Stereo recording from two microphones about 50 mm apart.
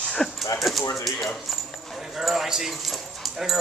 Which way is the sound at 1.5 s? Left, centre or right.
Centre.